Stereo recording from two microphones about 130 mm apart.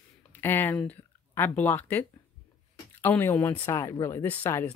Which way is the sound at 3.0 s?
15° left (ahead or behind).